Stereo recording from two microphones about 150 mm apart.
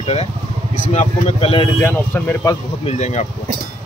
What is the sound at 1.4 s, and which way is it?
Speech, 35° left (ahead or behind).